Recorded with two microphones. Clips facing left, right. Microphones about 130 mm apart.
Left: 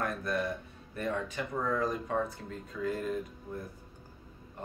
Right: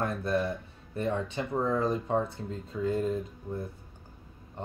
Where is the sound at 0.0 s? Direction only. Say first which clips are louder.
Right 3 dB; 25° right (ahead or behind).